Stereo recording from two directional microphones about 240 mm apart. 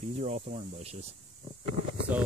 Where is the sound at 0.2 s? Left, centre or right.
Right.